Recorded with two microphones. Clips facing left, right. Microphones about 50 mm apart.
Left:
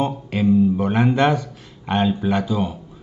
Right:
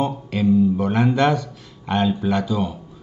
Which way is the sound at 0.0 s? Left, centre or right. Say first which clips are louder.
Left 1 dB; left.